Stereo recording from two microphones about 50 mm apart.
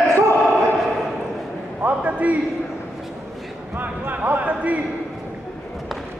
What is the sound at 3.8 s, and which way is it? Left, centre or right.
Basketball bounce, right.